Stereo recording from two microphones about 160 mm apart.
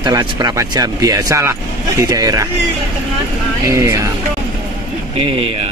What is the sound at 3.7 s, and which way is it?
Speech, 20° right (ahead or behind).